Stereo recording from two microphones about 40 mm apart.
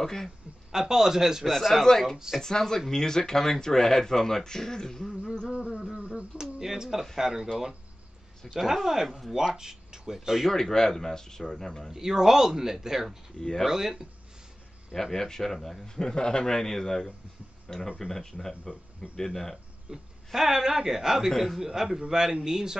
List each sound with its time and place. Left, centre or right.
0.0 s a man's voice: centre
0.7 s speech: centre
1.5 s a man's voice: centre
5.5 s a sound: right
6.4 s speech: centre
8.7 s speech: centre
10.5 s speech: centre
11.9 s speech: centre
13.4 s speech: centre
13.7 s speech: centre
15.0 s speech: centre
19.9 s speech: right